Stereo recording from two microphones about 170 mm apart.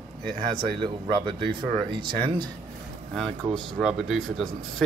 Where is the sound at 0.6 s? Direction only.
25° right (ahead or behind).